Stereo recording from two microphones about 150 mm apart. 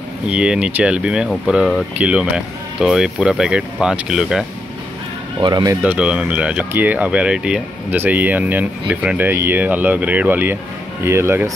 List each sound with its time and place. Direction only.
0.3 s speech: 5° right (ahead or behind)
5.4 s speech: 25° right (ahead or behind)
5.8 s speech: 5° right (ahead or behind)